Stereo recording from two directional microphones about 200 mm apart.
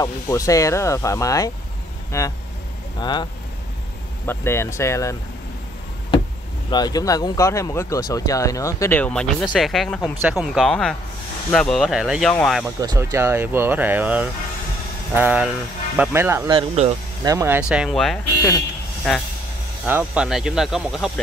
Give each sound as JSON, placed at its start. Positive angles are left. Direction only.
{"t": 0.0, "sound": "speech", "side_deg": 15}
{"t": 4.3, "sound": "speech", "side_deg": 15}
{"t": 6.7, "sound": "speech", "side_deg": 20}
{"t": 12.6, "sound": "speech", "side_deg": -15}
{"t": 16.5, "sound": "speech", "side_deg": -35}
{"t": 17.2, "sound": "speech", "side_deg": -15}
{"t": 19.9, "sound": "speech", "side_deg": -5}